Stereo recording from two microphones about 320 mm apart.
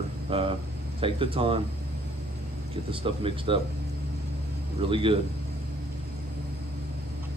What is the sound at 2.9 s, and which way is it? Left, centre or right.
Speech, centre.